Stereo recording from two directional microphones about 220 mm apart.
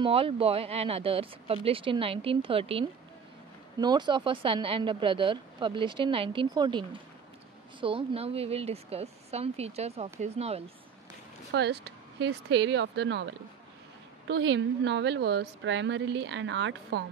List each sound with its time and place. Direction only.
0.0 s speech: 25° right (ahead or behind)
3.8 s speech: 20° right (ahead or behind)
11.5 s a woman's voice: 50° right (ahead or behind)